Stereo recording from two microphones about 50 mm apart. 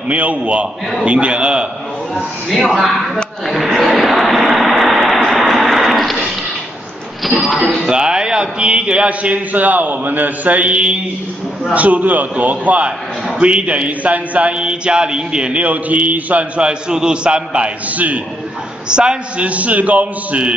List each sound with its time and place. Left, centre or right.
0.1 s speech: right
2.5 s speech: centre
3.4 s vehicle: centre
5.7 s a sound: centre
7.2 s music: centre
7.9 s a man's voice: centre
17.9 s a man's voice: right
18.9 s speech: centre